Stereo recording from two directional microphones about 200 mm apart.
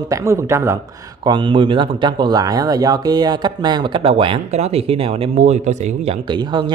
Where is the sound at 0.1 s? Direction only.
15° right (ahead or behind).